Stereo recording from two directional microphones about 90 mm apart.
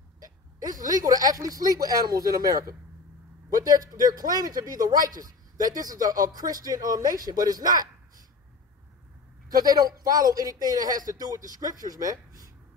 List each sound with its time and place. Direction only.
0.2 s a man's voice: 45° right (ahead or behind)
9.6 s a man's voice: 45° right (ahead or behind)